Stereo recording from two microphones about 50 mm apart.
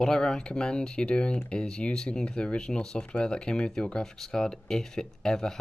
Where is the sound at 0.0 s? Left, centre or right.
Centre.